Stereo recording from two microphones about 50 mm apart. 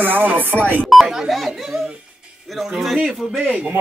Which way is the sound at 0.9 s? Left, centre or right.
Centre.